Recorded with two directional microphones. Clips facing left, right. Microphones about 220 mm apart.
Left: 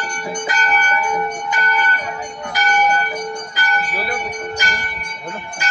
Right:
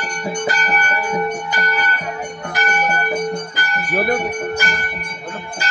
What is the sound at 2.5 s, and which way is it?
Church bell, 55° right (ahead or behind).